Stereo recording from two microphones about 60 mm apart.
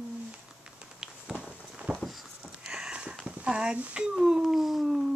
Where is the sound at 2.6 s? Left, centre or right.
Centre.